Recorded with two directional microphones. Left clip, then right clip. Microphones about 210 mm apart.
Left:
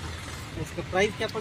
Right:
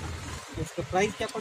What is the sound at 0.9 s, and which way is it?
Speech, 20° right (ahead or behind).